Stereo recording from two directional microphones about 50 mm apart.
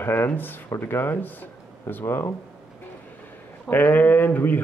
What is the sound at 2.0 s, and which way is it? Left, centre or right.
Speech, left.